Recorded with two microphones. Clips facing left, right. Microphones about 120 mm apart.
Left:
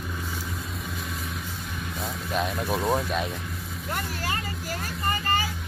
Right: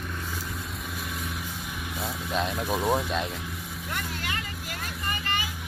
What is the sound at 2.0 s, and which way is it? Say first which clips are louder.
Speech: left 1 dB; centre (ahead or behind).